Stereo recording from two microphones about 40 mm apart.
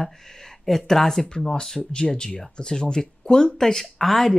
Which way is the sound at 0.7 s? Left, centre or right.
Centre.